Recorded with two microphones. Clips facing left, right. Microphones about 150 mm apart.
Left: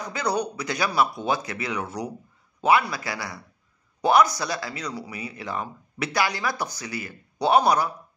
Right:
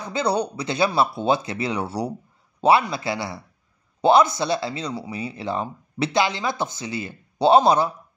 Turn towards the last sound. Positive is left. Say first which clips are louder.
# right 4 dB
turn(degrees=-25)  # may be behind; listen again after turning